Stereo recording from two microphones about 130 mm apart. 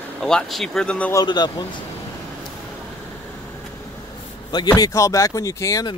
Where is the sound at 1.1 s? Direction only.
35° left (ahead or behind).